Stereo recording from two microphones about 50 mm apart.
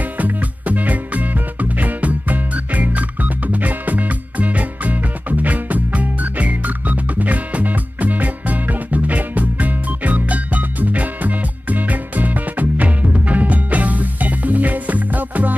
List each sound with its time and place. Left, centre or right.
0.2 s music: right